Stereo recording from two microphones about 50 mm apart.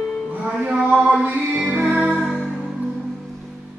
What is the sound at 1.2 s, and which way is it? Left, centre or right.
Music, right.